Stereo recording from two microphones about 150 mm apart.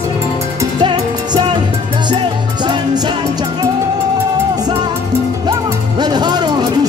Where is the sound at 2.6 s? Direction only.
30° right (ahead or behind).